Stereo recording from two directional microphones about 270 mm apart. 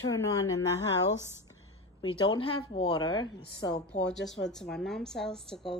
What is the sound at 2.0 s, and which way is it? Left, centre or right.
Speech, centre.